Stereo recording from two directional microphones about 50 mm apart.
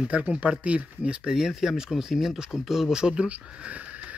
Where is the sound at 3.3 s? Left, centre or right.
Right.